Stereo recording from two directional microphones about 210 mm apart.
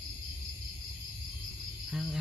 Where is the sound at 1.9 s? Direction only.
Centre (ahead or behind).